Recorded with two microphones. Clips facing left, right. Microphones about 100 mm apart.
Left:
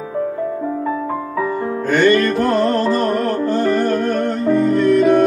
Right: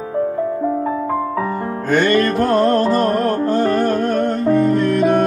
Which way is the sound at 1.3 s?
35° right (ahead or behind).